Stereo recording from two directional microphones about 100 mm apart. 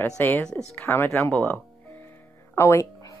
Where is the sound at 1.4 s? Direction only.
15° left (ahead or behind).